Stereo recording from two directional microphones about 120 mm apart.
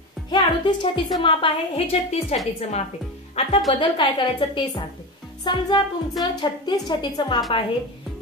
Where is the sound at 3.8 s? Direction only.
40° left (ahead or behind).